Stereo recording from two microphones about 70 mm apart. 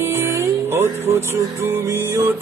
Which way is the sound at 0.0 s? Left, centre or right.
Right.